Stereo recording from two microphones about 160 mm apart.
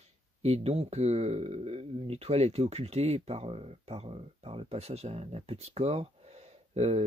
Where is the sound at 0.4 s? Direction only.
40° right (ahead or behind).